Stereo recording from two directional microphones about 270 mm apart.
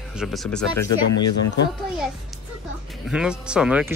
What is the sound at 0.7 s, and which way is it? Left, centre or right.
Speech, left.